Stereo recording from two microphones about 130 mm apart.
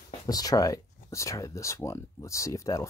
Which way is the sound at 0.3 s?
30° left (ahead or behind).